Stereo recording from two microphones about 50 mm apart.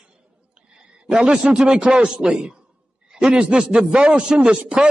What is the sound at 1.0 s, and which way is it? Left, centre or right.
A man's voice, centre.